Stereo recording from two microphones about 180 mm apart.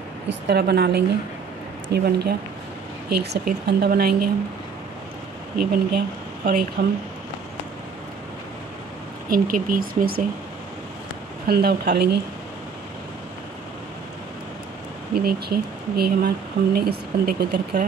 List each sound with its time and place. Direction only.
0.5 s speech: 65° right (ahead or behind)
5.6 s speech: 60° right (ahead or behind)
9.3 s speech: 50° right (ahead or behind)
11.4 s speech: 60° right (ahead or behind)
15.1 s speech: 60° right (ahead or behind)